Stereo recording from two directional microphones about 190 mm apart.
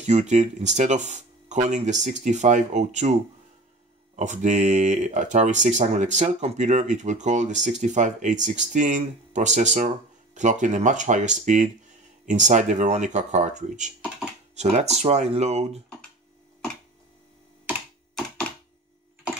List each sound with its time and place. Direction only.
0.0 s speech: 35° right (ahead or behind)
4.2 s speech: 40° right (ahead or behind)